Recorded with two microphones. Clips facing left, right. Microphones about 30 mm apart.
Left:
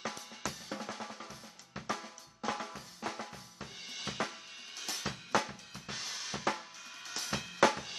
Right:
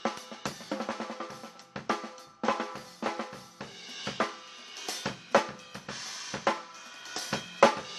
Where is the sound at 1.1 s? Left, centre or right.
Right.